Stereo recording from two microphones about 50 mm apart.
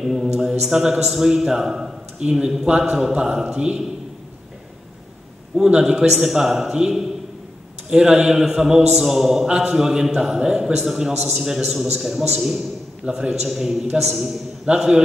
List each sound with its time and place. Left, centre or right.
0.0 s a man's voice: centre
5.6 s a man's voice: centre
13.5 s a man's voice: centre
14.7 s a man's voice: right